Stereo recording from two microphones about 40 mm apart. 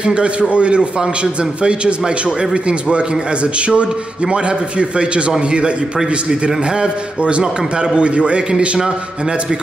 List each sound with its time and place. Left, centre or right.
0.0 s a man's voice: right